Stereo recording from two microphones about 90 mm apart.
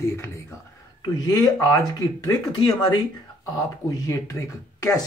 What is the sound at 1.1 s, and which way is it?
Speech, 45° left (ahead or behind).